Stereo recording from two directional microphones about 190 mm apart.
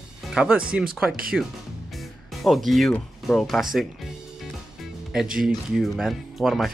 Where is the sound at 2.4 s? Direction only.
Centre (ahead or behind).